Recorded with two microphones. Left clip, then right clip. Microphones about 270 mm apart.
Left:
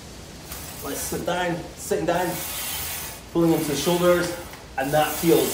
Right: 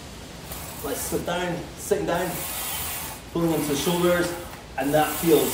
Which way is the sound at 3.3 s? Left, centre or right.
Centre.